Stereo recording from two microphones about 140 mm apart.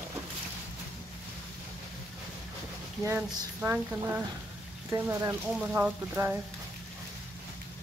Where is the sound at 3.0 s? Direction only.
15° right (ahead or behind).